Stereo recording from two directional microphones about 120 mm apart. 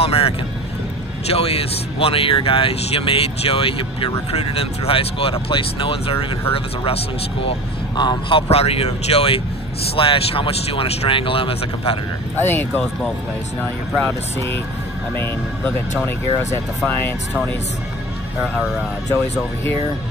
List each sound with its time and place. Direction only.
0.0 s speech: 55° left (ahead or behind)
1.3 s speech: 55° left (ahead or behind)
7.9 s speech: 40° left (ahead or behind)
12.4 s speech: 20° left (ahead or behind)
16.5 s speech: 20° left (ahead or behind)